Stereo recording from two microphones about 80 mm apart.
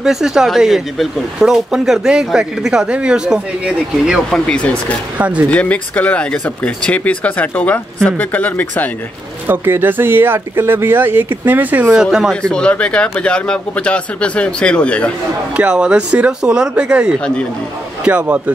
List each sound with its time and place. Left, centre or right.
0.0 s speech: centre
4.3 s speech: centre
5.1 s speech: centre
5.5 s speech: centre
9.5 s speech: right
11.9 s speech: centre
12.4 s speech: centre
15.5 s speech: centre